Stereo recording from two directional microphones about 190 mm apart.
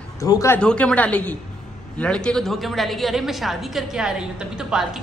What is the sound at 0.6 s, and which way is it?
A woman's voice, 5° left (ahead or behind).